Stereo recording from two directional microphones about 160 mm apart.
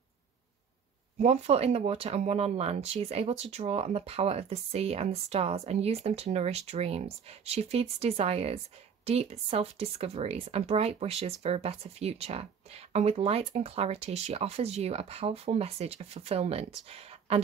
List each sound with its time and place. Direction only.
1.1 s speech: 45° right (ahead or behind)